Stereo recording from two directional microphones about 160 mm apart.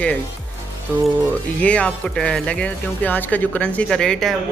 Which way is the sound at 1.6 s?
5° left (ahead or behind).